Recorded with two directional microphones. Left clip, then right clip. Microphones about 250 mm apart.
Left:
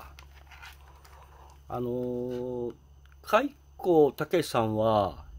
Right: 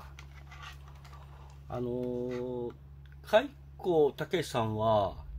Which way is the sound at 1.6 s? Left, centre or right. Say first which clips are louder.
Left 3 dB; left.